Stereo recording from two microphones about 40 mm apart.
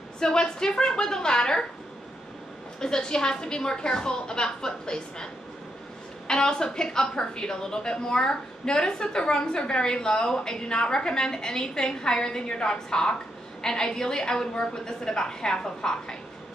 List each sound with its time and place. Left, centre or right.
0.2 s a woman's voice: centre
2.8 s a woman's voice: centre